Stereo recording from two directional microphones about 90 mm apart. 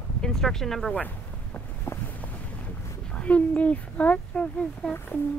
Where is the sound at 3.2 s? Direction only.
15° left (ahead or behind).